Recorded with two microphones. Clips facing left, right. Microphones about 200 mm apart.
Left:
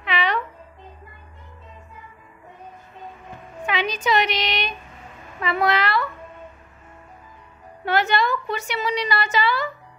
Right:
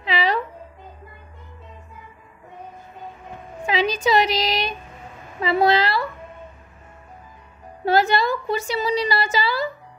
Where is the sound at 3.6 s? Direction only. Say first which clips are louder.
Right 3 dB; 30° right (ahead or behind).